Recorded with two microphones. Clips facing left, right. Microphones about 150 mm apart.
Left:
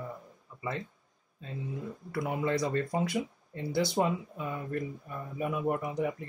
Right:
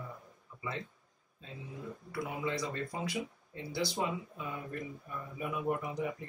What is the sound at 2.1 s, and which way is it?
Speech, 55° left (ahead or behind).